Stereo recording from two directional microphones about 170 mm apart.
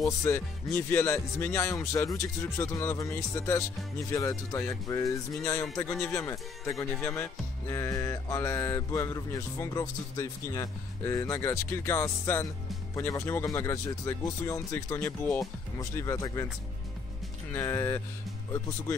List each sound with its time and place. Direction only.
0.2 s music: 15° left (ahead or behind)
17.5 s music: 15° left (ahead or behind)